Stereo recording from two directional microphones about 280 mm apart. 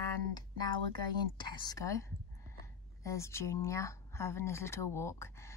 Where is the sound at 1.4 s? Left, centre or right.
Centre.